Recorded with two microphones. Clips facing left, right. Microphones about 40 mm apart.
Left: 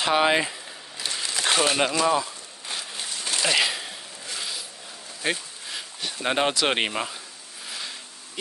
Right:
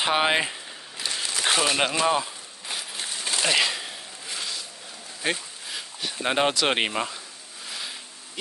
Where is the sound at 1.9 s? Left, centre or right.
Right.